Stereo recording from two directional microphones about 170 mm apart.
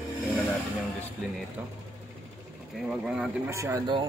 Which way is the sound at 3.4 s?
15° right (ahead or behind).